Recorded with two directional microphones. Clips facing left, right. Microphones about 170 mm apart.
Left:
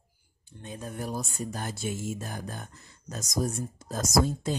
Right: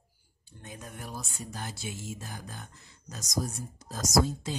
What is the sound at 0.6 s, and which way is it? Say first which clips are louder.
Speech: left 7 dB; 30° left (ahead or behind).